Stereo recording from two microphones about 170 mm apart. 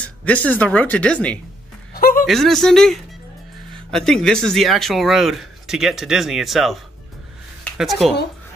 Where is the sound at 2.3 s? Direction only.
Centre (ahead or behind).